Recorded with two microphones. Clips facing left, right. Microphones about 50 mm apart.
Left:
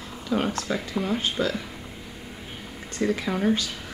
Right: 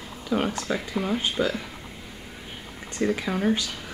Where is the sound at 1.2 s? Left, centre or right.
Centre.